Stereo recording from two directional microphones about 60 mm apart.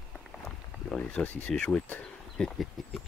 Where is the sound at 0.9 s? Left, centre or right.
Centre.